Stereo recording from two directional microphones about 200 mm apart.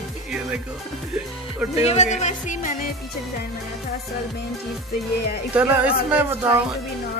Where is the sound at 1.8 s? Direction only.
30° left (ahead or behind).